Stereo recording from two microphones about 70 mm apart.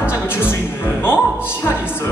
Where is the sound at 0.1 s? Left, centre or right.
Left.